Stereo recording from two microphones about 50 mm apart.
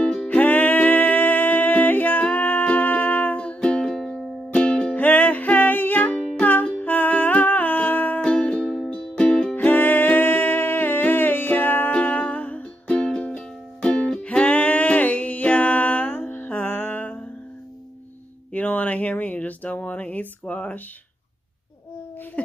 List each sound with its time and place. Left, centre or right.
0.0 s music: left
3.6 s music: centre
4.6 s music: left
4.9 s music: left
8.2 s music: centre
9.6 s music: left
11.9 s music: left
18.5 s a sound: left